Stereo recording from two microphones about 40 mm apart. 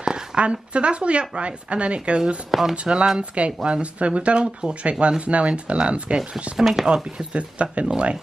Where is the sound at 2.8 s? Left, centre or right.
Right.